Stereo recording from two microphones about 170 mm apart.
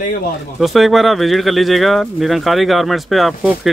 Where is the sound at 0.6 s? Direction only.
Centre (ahead or behind).